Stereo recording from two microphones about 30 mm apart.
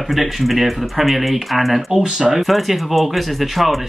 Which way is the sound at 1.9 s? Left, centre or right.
Centre.